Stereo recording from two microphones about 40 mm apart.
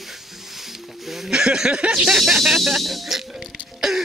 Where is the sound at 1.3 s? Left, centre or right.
Centre.